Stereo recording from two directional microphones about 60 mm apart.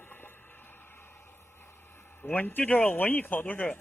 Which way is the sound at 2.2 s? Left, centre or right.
Left.